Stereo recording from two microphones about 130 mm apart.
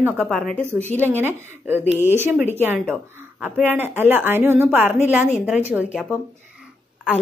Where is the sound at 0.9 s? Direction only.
15° right (ahead or behind).